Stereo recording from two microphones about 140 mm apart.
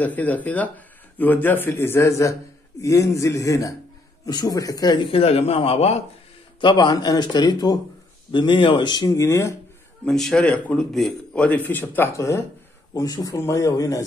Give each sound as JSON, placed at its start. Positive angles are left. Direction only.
{"t": 0.0, "sound": "a man's voice", "side_deg": 10}
{"t": 6.6, "sound": "a man's voice", "side_deg": 35}
{"t": 10.0, "sound": "speech", "side_deg": 5}